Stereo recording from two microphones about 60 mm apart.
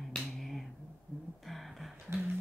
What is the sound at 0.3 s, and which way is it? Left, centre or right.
Finger snapping, centre.